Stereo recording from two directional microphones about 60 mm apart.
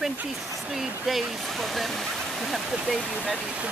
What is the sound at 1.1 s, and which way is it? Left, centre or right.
Speech, centre.